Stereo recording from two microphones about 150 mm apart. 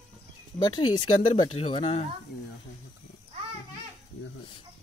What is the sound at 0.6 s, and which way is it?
Speech, 30° left (ahead or behind).